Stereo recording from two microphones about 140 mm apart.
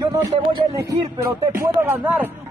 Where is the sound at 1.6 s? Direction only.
20° right (ahead or behind).